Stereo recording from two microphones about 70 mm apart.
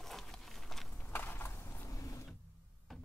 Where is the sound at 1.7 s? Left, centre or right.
Left.